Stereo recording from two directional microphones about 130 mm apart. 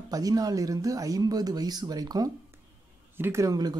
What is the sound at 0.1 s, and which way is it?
Speech, 30° right (ahead or behind).